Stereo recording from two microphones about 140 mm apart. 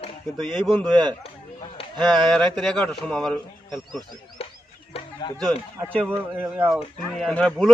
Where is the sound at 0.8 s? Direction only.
30° right (ahead or behind).